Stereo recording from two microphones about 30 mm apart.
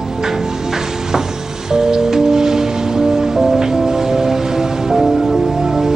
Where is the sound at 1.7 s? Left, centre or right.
Centre.